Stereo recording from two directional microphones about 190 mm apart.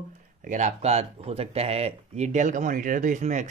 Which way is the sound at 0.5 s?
40° right (ahead or behind).